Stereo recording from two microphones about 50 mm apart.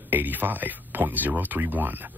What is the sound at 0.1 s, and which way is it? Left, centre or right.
Speech, right.